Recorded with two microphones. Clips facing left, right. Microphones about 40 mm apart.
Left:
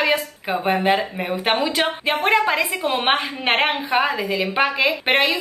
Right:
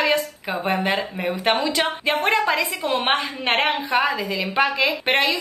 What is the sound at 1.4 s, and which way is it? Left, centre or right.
A woman's voice, centre.